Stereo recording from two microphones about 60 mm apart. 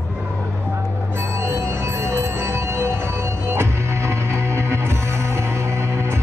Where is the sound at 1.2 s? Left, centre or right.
Right.